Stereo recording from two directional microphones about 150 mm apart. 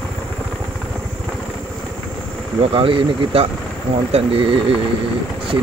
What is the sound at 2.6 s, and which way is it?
Speech, 35° right (ahead or behind).